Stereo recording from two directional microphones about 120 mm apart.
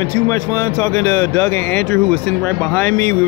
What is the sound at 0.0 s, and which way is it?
Speech, 25° left (ahead or behind).